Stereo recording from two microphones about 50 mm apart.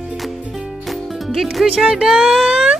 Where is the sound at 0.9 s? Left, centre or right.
Centre.